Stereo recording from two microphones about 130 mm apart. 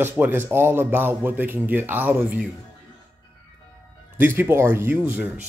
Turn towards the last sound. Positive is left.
turn(degrees=-15)  # may be behind; listen again after turning